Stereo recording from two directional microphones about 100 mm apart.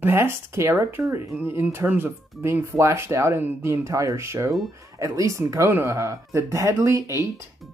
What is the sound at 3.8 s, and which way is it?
Speech, 35° right (ahead or behind).